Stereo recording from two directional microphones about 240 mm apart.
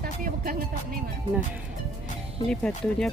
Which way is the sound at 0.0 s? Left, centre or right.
Right.